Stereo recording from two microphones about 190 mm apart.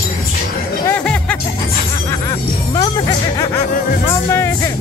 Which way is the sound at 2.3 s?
20° left (ahead or behind).